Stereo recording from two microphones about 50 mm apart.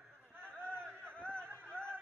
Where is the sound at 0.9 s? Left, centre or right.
Right.